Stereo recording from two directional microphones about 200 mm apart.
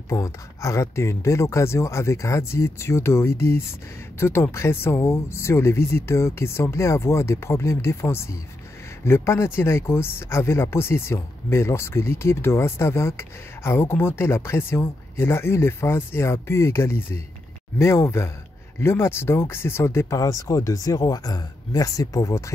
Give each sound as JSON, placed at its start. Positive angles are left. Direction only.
{"t": 0.1, "sound": "speech", "side_deg": 15}